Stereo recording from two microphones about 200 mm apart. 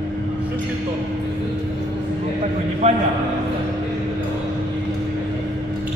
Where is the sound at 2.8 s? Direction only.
35° right (ahead or behind).